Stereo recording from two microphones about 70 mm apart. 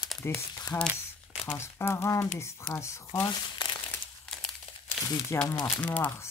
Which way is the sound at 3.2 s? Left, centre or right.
Left.